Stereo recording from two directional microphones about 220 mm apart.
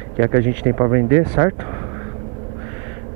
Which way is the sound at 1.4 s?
15° right (ahead or behind).